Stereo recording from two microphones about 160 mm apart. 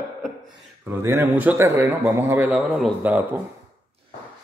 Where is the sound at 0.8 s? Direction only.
15° right (ahead or behind).